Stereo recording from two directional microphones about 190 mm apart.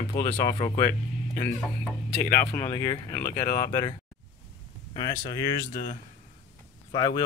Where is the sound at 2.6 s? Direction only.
15° left (ahead or behind).